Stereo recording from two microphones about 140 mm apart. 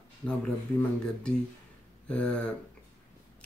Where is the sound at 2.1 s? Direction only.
10° left (ahead or behind).